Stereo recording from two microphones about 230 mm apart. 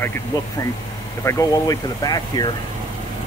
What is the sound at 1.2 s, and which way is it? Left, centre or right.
Speech, centre.